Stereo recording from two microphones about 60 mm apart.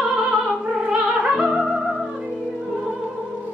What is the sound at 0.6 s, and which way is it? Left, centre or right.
Opera, centre.